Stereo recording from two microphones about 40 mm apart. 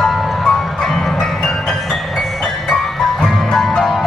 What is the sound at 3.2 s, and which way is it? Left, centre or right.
Music, centre.